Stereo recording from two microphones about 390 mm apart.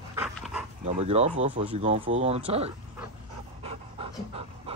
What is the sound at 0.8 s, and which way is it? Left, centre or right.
Speech, centre.